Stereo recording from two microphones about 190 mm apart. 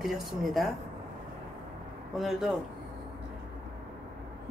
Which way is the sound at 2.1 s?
Centre (ahead or behind).